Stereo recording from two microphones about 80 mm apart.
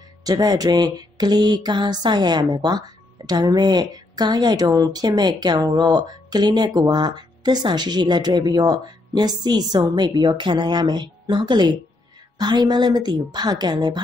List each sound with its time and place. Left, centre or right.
0.2 s a woman's voice: right